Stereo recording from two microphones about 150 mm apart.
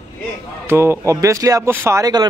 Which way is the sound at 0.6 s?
15° right (ahead or behind).